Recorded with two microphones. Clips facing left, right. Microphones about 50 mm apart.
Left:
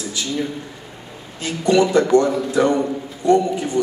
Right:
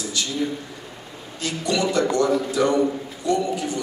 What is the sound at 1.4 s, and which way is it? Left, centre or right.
A man's voice, left.